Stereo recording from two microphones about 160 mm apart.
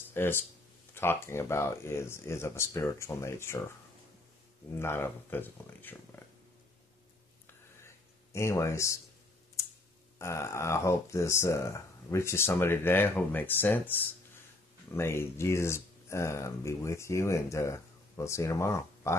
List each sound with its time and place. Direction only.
0.1 s speech: 15° left (ahead or behind)
4.7 s speech: 15° left (ahead or behind)
7.8 s a sound: 15° left (ahead or behind)
10.1 s speech: 15° left (ahead or behind)